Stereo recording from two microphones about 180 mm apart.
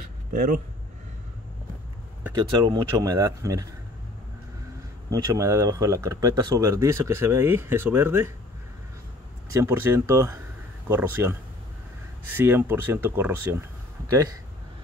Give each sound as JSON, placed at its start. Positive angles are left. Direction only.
{"t": 0.3, "sound": "speech", "side_deg": -50}
{"t": 2.3, "sound": "speech", "side_deg": -20}
{"t": 5.1, "sound": "speech", "side_deg": -20}
{"t": 9.5, "sound": "speech", "side_deg": -15}
{"t": 12.4, "sound": "speech", "side_deg": -10}